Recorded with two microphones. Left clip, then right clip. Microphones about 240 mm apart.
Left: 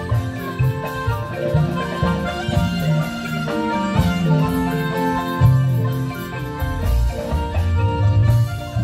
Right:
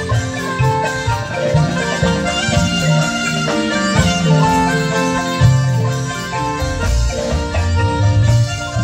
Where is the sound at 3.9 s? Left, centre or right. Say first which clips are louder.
Right 6 dB; right.